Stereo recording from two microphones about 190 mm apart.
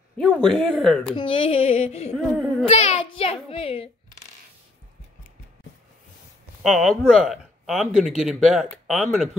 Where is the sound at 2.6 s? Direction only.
35° left (ahead or behind).